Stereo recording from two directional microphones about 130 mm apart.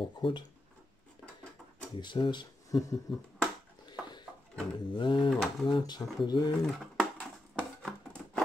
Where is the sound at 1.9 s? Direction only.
35° left (ahead or behind).